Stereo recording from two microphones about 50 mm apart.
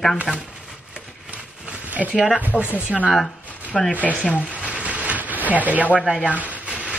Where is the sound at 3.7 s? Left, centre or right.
Centre.